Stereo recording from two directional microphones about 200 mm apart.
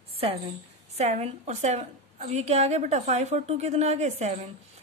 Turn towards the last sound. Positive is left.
turn(degrees=-35)  # may be behind; listen again after turning